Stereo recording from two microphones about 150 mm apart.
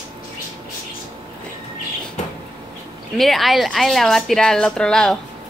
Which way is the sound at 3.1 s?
Centre (ahead or behind).